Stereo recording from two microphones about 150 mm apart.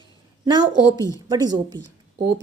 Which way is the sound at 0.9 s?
20° left (ahead or behind).